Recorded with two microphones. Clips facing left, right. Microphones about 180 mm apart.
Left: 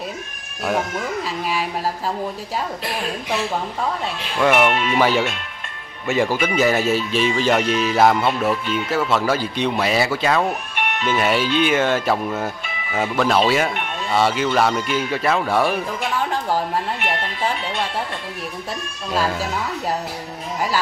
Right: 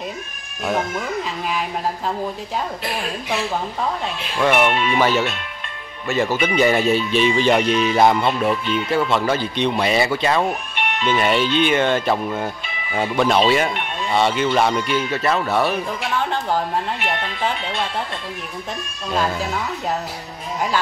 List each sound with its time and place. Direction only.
1.5 s speech: 5° left (ahead or behind)
4.4 s speech: 5° left (ahead or behind)
19.1 s speech: 5° left (ahead or behind)